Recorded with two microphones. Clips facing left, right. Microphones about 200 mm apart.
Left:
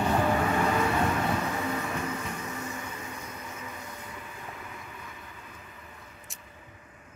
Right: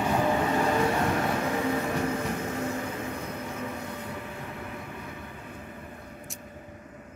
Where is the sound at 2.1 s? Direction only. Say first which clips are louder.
Right 6 dB; 60° right (ahead or behind); by 7.0 s 45° right (ahead or behind).